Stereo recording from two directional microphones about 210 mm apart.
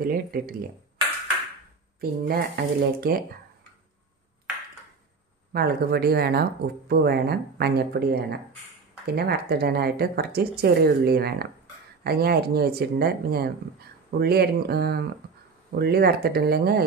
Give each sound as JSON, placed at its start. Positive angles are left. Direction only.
{"t": 0.0, "sound": "speech", "side_deg": -45}
{"t": 2.0, "sound": "speech", "side_deg": -45}
{"t": 5.5, "sound": "speech", "side_deg": -45}